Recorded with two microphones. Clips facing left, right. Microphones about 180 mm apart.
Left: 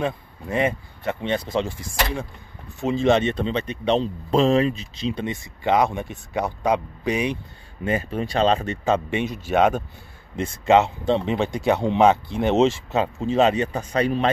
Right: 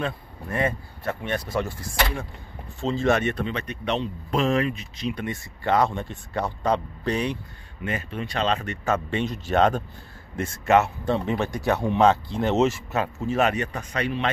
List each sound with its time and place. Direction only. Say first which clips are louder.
0.0 s speech: left 4 dB; 20° left (ahead or behind)
7.8 s speech: left 6 dB; 30° left (ahead or behind)
8.8 s speech: left 2 dB; 15° left (ahead or behind)
10.4 s speech: left 3 dB; 20° left (ahead or behind); by 14.3 s 35° left (ahead or behind)